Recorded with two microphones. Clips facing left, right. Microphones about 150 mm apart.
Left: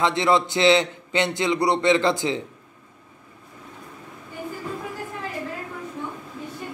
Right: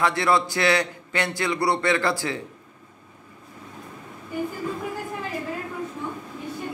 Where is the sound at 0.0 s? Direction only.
20° left (ahead or behind).